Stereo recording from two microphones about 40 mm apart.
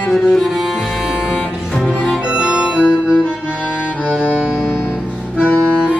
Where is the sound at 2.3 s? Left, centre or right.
Right.